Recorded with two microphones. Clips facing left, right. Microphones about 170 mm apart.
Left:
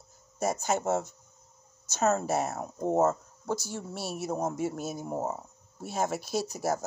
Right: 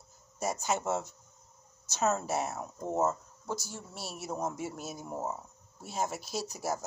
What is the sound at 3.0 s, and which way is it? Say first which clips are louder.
Speech: left 3 dB; 55° left (ahead or behind).